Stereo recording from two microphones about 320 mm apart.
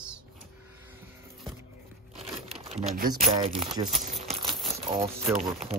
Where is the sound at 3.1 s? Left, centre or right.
Centre.